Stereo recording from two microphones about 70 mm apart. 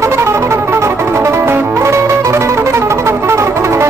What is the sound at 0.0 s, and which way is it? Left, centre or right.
Music, right.